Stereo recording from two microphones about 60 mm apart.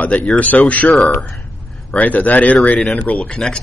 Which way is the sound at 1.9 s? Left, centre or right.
Left.